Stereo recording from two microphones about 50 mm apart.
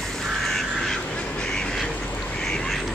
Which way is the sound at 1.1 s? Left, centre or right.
Centre.